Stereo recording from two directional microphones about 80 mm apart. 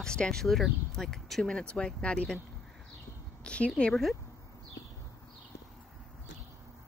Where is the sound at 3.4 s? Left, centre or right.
Centre.